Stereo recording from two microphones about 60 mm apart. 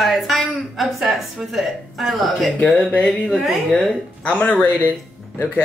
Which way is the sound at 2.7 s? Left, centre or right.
Left.